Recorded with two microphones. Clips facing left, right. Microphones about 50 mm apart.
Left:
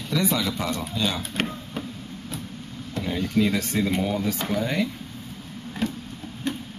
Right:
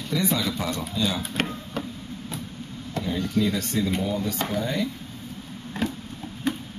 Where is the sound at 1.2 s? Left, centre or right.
Centre.